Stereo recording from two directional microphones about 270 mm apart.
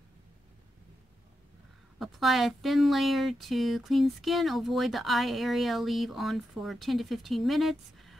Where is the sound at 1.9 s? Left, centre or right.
Centre.